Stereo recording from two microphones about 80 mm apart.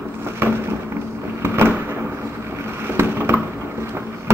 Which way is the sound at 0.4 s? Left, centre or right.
Right.